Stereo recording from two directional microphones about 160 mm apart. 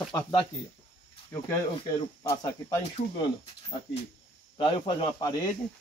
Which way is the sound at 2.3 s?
20° left (ahead or behind).